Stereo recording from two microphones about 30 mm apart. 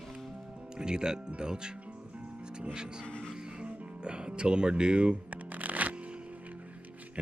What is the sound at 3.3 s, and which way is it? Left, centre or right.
Music, right.